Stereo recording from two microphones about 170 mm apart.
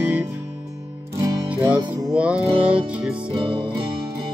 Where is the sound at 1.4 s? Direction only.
10° right (ahead or behind).